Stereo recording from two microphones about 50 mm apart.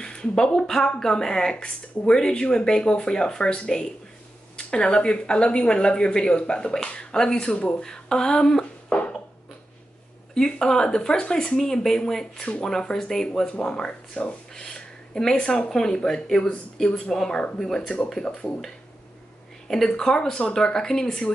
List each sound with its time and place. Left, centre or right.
0.0 s speech: left
7.8 s a sound: centre
10.3 s speech: centre
19.7 s speech: centre